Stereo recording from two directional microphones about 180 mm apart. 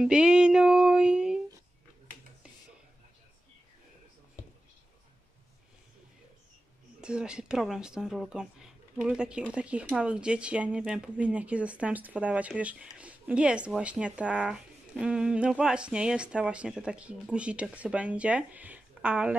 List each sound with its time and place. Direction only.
0.0 s music: 5° right (ahead or behind)
7.0 s speech: 5° right (ahead or behind)